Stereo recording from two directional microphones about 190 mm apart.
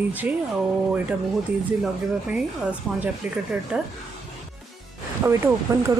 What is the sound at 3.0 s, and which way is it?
Speech, 5° right (ahead or behind).